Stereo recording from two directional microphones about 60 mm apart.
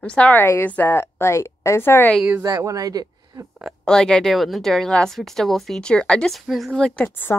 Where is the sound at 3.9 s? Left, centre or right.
Centre.